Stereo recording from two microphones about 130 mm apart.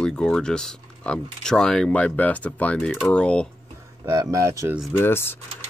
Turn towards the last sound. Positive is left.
turn(degrees=15)  # may be behind; listen again after turning